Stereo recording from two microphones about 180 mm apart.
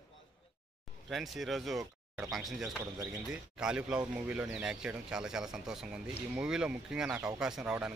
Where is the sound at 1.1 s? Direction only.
Centre (ahead or behind).